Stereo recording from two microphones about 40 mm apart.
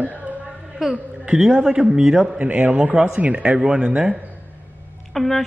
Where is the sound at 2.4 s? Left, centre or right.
Right.